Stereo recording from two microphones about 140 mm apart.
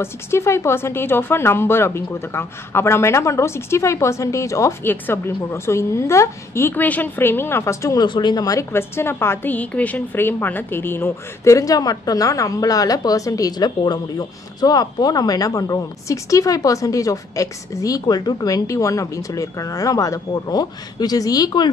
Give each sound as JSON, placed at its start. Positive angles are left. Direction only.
{"t": 0.0, "sound": "speech", "side_deg": 20}